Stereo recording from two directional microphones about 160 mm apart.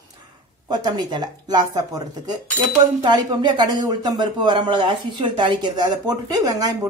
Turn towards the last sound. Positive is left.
turn(degrees=-25)  # may be behind; listen again after turning